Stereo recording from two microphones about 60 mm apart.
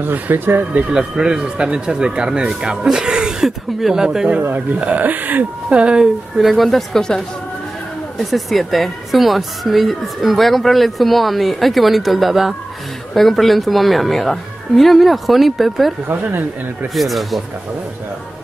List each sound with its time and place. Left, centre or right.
0.0 s speech: right
0.9 s speech: centre
4.4 s speech: right
4.7 s speech: right
5.7 s speech: centre
6.3 s a woman's voice: centre
16.1 s speech: right
16.9 s a woman's voice: centre